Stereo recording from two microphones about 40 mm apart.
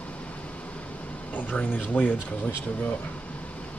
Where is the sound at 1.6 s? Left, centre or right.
Left.